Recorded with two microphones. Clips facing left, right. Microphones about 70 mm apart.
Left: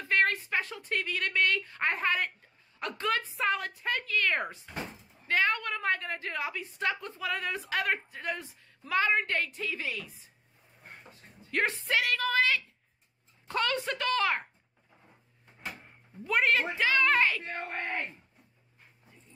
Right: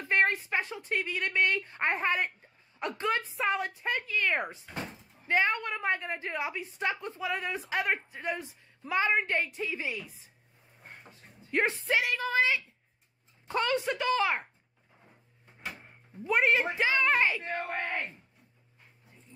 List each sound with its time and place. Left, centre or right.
0.0 s a woman's voice: right
11.5 s a woman's voice: right
16.3 s a woman's voice: centre